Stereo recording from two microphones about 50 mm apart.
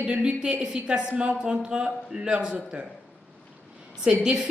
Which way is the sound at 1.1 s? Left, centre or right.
Right.